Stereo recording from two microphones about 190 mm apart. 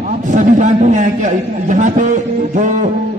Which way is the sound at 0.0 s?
45° right (ahead or behind).